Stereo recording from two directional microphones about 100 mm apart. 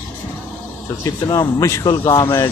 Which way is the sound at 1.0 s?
40° left (ahead or behind).